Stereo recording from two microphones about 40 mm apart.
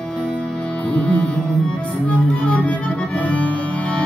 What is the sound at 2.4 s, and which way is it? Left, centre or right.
Accordion, left.